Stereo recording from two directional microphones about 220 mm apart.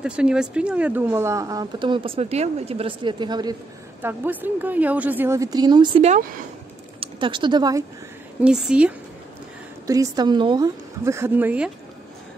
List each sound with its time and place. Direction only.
0.0 s speech: 5° right (ahead or behind)
8.4 s a woman's voice: 5° right (ahead or behind)
9.8 s speech: 15° right (ahead or behind)